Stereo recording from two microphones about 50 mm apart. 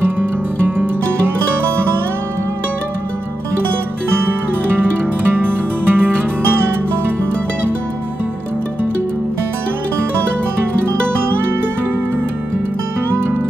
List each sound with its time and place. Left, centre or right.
0.2 s music: right
5.3 s music: right